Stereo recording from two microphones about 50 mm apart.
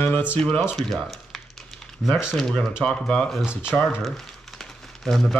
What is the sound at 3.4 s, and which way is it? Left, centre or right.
Speech, centre.